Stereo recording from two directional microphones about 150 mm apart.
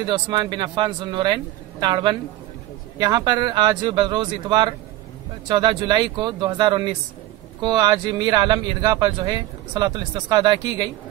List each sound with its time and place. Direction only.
0.0 s a man's voice: 30° right (ahead or behind)